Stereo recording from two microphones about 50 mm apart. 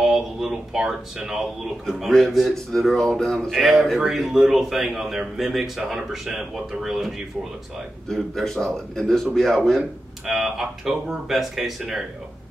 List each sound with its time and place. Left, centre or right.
0.0 s speech: centre
1.9 s speech: centre
8.1 s a man's voice: centre
10.2 s speech: centre